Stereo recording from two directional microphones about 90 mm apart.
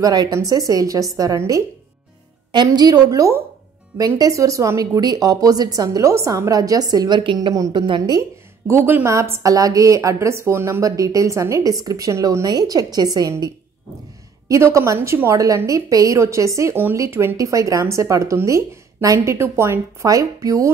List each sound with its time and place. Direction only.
0.0 s a woman's voice: 45° right (ahead or behind)
2.5 s a woman's voice: 50° right (ahead or behind)
8.6 s a woman's voice: 25° right (ahead or behind); by 13.3 s 45° right (ahead or behind)
14.5 s a woman's voice: 35° right (ahead or behind)